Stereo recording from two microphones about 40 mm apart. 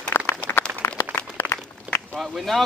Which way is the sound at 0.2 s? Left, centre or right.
Left.